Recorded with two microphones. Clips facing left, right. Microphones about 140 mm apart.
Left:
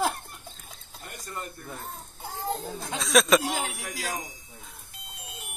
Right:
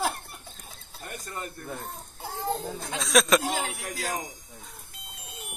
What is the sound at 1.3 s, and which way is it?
Speech, centre (ahead or behind).